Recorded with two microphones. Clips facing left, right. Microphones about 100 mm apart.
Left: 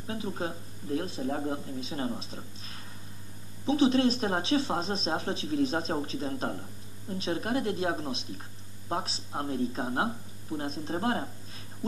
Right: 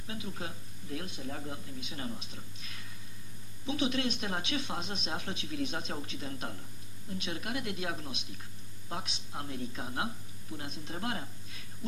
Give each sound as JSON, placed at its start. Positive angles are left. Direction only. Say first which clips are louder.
{"t": 0.0, "sound": "speech", "louder": "left 7 dB", "side_deg": 35}